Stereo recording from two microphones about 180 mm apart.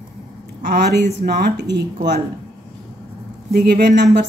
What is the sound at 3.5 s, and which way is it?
Speech, 55° right (ahead or behind).